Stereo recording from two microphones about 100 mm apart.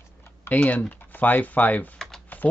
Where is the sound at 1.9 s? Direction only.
5° left (ahead or behind).